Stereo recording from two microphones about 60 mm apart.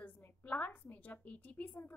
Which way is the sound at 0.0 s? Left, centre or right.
Left.